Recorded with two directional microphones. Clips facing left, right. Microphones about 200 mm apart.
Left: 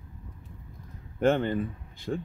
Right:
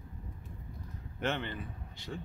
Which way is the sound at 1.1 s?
45° left (ahead or behind).